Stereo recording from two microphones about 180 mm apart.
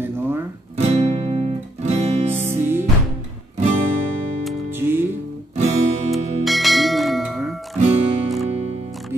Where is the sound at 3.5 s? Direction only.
40° right (ahead or behind).